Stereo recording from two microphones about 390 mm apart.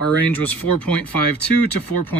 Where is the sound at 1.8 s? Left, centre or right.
Left.